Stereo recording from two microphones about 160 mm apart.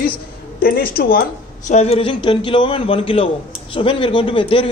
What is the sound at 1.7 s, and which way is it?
A woman's voice, 40° left (ahead or behind).